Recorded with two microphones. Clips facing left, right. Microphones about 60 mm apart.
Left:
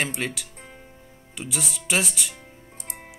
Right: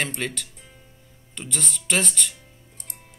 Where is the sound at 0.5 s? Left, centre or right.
Left.